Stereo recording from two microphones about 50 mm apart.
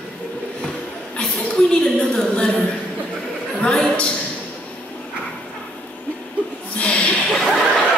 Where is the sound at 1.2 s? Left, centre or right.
Centre.